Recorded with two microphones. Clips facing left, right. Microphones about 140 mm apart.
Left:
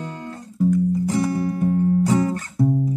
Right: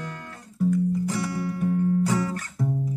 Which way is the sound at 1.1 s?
25° left (ahead or behind).